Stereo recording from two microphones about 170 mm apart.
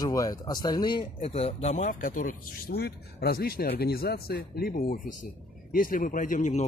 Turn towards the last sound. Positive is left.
turn(degrees=45)  # may be behind; listen again after turning